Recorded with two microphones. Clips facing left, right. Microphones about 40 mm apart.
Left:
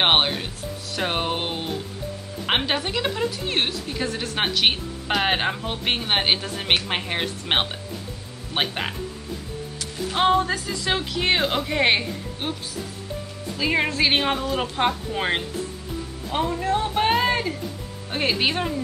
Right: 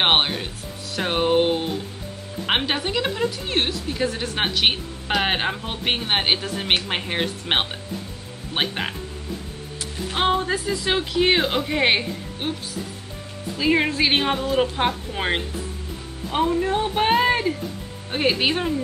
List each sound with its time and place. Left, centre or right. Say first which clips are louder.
0.0 s music: even; centre
0.9 s a woman's voice: right 6 dB; centre
10.1 s a woman's voice: left 1 dB; centre
13.6 s a woman's voice: right 2 dB; centre
16.6 s music: right 1 dB; centre
18.1 s a woman's voice: right 2 dB; centre